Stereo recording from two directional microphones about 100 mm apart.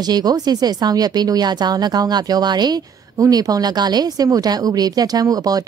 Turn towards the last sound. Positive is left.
turn(degrees=-40)  # may be behind; listen again after turning